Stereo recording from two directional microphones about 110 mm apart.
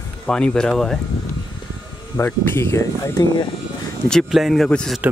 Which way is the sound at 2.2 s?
20° left (ahead or behind).